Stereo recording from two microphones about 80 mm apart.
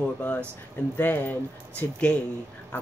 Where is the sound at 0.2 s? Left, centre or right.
Left.